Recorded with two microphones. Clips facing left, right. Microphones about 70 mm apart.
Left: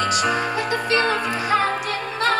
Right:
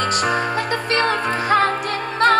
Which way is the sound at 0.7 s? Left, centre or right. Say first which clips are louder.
Right 1 dB; right.